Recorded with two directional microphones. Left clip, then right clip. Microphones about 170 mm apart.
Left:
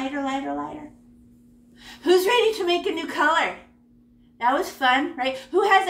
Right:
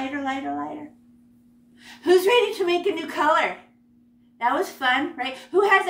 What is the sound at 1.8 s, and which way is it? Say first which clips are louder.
A woman's voice: right 1 dB; centre (ahead or behind).